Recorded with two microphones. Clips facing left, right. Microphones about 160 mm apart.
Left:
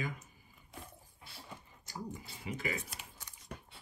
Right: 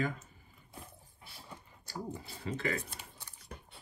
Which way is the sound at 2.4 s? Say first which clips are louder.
Right 3 dB; 10° left (ahead or behind).